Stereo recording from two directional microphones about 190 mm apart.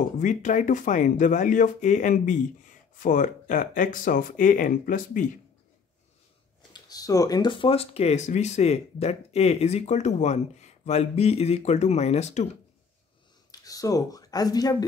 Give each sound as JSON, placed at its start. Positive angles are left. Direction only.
{"t": 0.0, "sound": "speech", "side_deg": 40}
{"t": 6.7, "sound": "speech", "side_deg": 20}
{"t": 13.5, "sound": "speech", "side_deg": 20}